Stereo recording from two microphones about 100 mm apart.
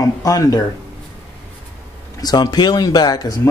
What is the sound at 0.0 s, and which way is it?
Speech, 35° left (ahead or behind).